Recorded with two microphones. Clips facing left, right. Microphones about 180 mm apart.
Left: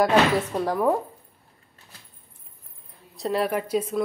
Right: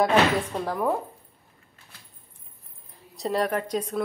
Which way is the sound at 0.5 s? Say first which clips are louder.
Left 4 dB; 10° left (ahead or behind).